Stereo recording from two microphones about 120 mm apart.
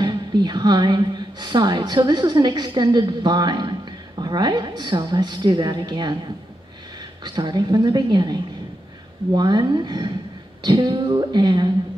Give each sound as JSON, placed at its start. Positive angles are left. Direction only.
{"t": 0.0, "sound": "a woman's voice", "side_deg": -35}
{"t": 7.2, "sound": "a woman's voice", "side_deg": -35}